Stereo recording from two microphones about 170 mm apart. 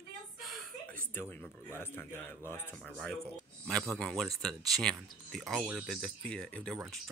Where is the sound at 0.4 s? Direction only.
Centre (ahead or behind).